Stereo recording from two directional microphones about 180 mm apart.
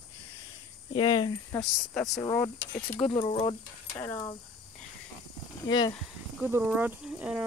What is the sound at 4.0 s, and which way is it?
Speech, 15° left (ahead or behind).